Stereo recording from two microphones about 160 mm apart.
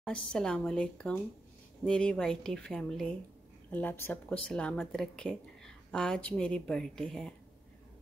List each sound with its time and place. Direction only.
0.0 s speech: 5° left (ahead or behind)